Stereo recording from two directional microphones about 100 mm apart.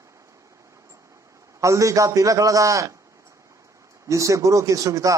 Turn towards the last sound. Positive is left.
turn(degrees=-35)  # may be behind; listen again after turning